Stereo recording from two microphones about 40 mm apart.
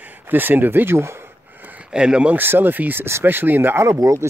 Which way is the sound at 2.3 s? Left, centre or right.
Right.